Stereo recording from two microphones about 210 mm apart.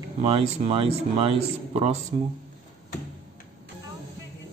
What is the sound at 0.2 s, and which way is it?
A man's voice, 25° right (ahead or behind).